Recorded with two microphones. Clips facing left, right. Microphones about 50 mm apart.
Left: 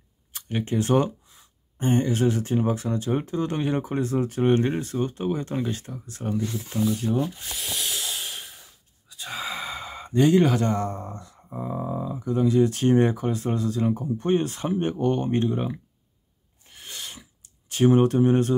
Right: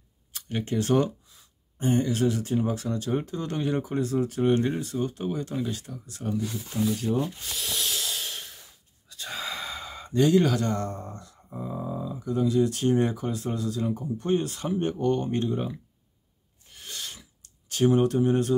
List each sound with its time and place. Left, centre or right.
0.3 s speech: left
6.7 s speech: centre
16.7 s clicking: centre; by 18.5 s left